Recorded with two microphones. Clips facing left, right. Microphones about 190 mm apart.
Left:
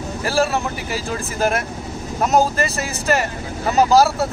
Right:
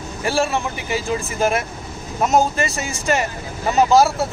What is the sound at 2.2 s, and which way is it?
Speech, centre (ahead or behind).